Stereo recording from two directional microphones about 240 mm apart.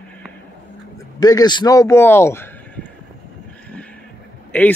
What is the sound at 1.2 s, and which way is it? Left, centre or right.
Speech, centre.